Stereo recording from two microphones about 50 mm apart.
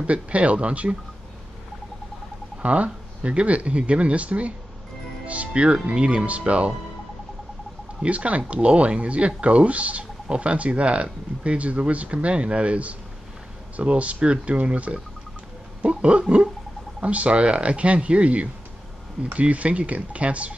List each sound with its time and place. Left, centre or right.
0.0 s speech: right
2.6 s speech: right
8.0 s speech: right